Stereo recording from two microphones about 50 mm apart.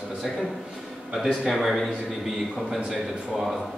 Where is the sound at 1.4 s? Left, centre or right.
Centre.